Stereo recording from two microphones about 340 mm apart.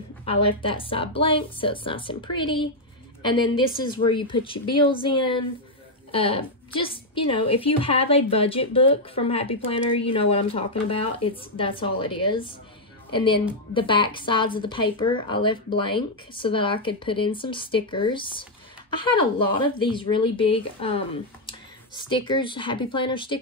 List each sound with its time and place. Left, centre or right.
0.2 s a woman's voice: centre
22.1 s a woman's voice: centre